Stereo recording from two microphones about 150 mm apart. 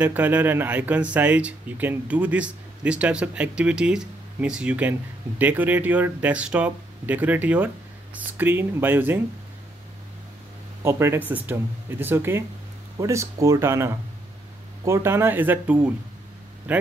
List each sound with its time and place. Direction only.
0.0 s speech: 10° right (ahead or behind)
10.8 s speech: 20° right (ahead or behind)